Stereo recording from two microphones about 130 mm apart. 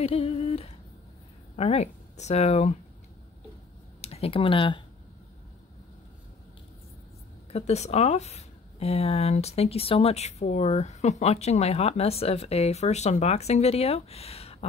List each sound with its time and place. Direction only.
0.0 s humming: 50° left (ahead or behind)
1.6 s speech: 55° left (ahead or behind)
4.0 s speech: 50° left (ahead or behind)
7.5 s speech: 60° left (ahead or behind)